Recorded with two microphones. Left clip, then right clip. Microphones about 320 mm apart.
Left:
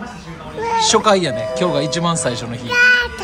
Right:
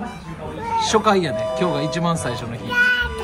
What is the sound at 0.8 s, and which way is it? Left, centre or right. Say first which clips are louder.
Speech: left 3 dB; centre.